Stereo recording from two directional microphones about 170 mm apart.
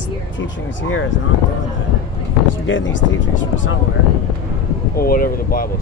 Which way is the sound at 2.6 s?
90° left.